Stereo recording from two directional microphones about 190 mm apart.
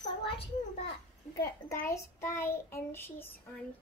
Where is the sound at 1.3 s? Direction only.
15° left (ahead or behind).